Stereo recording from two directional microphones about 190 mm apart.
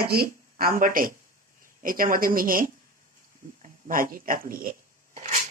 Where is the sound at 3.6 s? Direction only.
45° right (ahead or behind).